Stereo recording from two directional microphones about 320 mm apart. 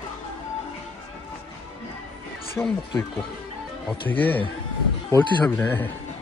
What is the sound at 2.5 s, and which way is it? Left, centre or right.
Speech, centre.